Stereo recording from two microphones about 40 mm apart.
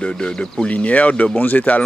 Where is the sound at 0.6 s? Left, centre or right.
Left.